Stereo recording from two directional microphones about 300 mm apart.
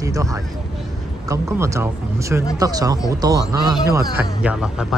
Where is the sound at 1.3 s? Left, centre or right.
Centre.